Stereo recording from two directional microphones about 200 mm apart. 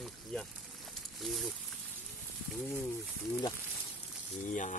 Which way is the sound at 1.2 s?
Centre (ahead or behind).